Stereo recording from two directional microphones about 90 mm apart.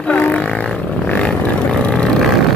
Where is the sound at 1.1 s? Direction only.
10° left (ahead or behind).